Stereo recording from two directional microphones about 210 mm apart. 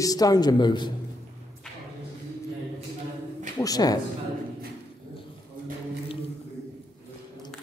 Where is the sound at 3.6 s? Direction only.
20° left (ahead or behind).